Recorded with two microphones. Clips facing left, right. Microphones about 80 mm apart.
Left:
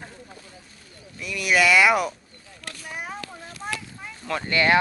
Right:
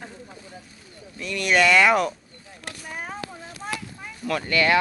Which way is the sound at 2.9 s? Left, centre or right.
Centre.